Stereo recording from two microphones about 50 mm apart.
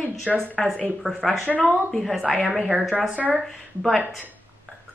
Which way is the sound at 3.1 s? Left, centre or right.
Right.